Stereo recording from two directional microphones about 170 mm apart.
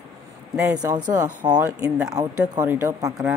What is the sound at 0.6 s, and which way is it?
Speech, 20° right (ahead or behind).